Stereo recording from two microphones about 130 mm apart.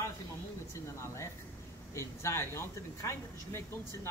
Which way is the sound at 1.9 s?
20° left (ahead or behind).